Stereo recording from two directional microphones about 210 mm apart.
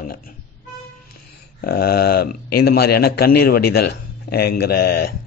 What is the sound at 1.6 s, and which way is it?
A man's voice, 50° left (ahead or behind).